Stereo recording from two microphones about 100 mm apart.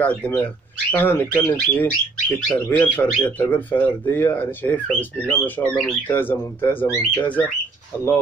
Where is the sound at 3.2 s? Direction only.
15° left (ahead or behind).